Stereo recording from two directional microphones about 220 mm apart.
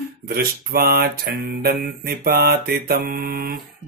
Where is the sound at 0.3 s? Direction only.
45° right (ahead or behind).